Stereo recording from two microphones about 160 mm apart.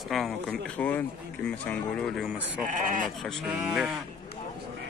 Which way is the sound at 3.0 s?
Centre (ahead or behind).